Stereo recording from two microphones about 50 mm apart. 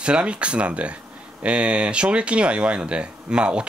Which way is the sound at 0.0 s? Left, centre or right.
Right.